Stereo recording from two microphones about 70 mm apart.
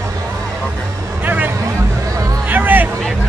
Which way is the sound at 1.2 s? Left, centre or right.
Right.